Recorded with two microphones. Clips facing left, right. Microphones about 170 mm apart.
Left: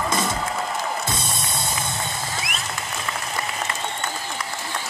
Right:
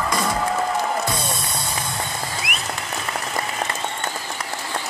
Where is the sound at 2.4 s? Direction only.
60° right (ahead or behind).